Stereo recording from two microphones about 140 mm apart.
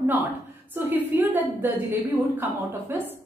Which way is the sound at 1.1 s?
15° right (ahead or behind).